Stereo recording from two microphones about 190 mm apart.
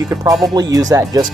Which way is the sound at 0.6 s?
20° right (ahead or behind).